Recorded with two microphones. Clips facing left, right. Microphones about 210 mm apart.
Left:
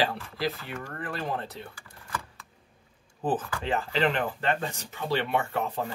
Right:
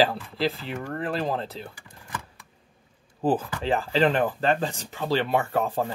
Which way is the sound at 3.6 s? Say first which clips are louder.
Right 5 dB; 30° right (ahead or behind).